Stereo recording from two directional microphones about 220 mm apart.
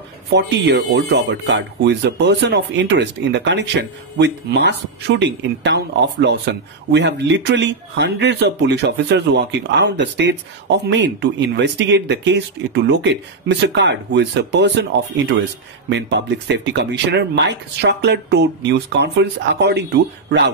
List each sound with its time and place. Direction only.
0.3 s speech: 50° right (ahead or behind)
15.9 s speech: 50° right (ahead or behind)